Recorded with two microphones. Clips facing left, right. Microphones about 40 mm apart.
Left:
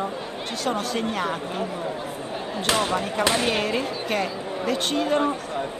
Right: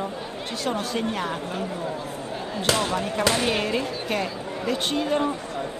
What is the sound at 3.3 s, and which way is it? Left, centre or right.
Speech, centre.